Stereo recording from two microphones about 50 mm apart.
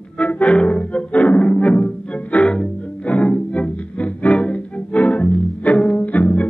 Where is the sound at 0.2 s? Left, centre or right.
Left.